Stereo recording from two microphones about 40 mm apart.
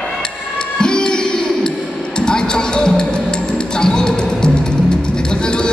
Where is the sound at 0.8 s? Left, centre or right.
Left.